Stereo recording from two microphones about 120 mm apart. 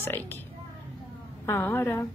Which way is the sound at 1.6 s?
20° left (ahead or behind).